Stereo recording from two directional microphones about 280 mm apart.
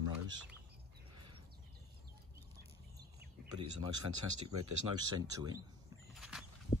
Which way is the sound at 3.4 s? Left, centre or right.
Right.